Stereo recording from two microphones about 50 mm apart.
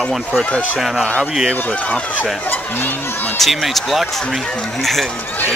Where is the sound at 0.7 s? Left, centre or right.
Centre.